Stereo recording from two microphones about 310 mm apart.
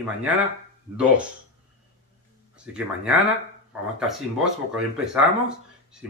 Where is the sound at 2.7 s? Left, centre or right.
Centre.